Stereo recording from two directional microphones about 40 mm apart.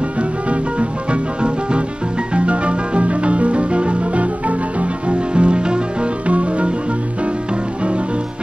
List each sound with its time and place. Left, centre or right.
0.5 s music: right